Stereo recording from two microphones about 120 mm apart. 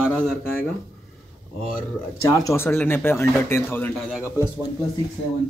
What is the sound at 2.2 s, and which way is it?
Speech, 25° left (ahead or behind).